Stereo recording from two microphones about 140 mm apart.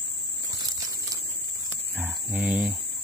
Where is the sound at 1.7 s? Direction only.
10° right (ahead or behind).